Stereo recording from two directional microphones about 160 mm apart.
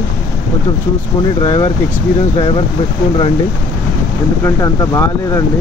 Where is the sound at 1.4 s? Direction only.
30° left (ahead or behind).